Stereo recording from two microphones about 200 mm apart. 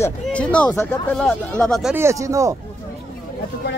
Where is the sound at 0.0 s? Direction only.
5° left (ahead or behind).